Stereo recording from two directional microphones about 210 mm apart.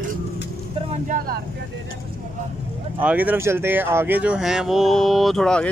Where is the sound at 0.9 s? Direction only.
40° right (ahead or behind).